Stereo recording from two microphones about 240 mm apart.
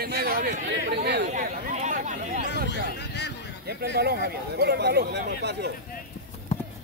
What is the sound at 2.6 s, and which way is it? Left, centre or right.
Speech, left.